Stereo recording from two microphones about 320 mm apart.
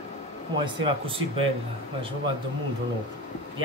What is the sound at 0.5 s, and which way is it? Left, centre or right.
Speech, centre.